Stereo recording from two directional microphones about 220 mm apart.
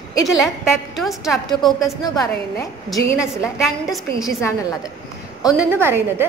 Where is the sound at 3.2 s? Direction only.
5° right (ahead or behind).